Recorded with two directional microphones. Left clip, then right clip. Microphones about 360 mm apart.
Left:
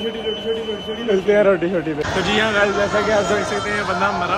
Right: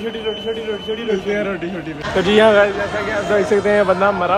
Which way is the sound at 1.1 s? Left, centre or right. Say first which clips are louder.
Left 8 dB; centre.